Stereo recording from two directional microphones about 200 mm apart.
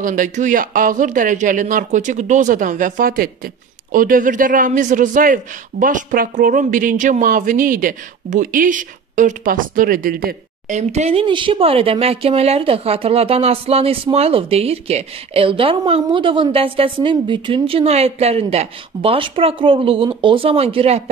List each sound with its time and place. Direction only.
0.0 s speech: 40° right (ahead or behind)